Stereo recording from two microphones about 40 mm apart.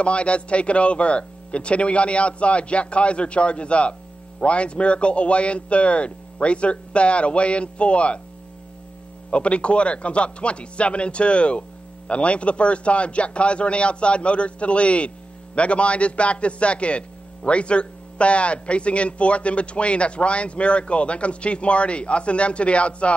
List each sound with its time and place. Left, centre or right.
0.0 s a man's voice: left
9.3 s a man's voice: left